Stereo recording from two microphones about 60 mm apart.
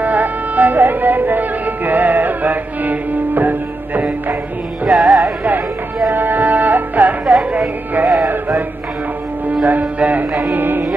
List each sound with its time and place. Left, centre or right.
0.0 s music: right
4.8 s music: centre
6.0 s music: right
9.7 s speech: right
10.4 s music: right